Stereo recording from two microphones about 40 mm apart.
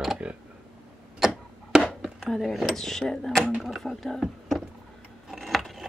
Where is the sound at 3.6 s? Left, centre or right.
Centre.